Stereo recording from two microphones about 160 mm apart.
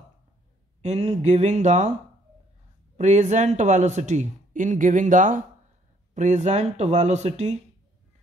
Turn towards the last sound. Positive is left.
turn(degrees=-45)  # may be behind; listen again after turning